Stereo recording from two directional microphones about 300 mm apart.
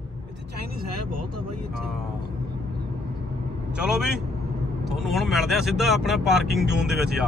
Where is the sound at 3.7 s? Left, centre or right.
Centre.